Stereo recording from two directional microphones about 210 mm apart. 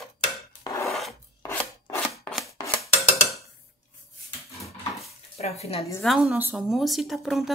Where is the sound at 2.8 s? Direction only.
Centre (ahead or behind).